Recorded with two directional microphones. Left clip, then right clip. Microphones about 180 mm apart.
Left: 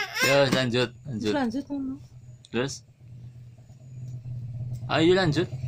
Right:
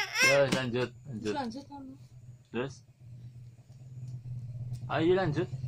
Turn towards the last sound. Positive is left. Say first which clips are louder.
# left 6 dB
turn(degrees=15)  # may be behind; listen again after turning